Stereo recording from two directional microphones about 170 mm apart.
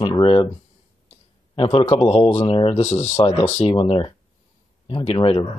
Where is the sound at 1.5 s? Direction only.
30° left (ahead or behind).